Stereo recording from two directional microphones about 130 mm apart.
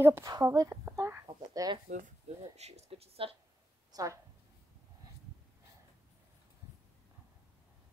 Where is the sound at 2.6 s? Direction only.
55° right (ahead or behind).